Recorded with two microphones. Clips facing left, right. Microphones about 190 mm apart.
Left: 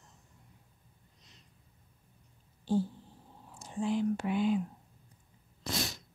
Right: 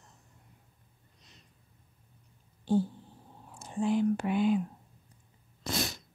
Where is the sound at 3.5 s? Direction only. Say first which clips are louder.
Right 3 dB; 55° right (ahead or behind).